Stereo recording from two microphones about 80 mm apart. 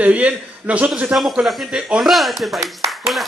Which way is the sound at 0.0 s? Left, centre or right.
Centre.